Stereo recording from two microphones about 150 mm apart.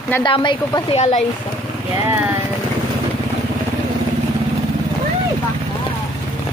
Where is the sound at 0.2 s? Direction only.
30° left (ahead or behind).